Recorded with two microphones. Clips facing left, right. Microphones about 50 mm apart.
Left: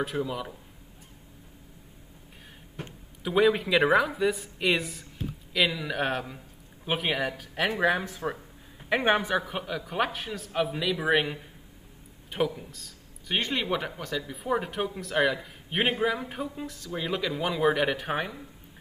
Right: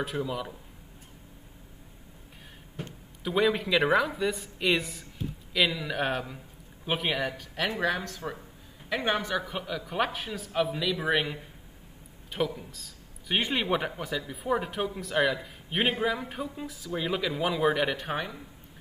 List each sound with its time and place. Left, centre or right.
0.0 s speech: centre
3.3 s speech: centre
7.8 s speech: centre
9.5 s a man's voice: centre
13.4 s speech: centre